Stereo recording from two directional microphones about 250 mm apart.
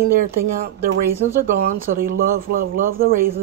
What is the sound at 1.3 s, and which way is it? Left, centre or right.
Speech, centre.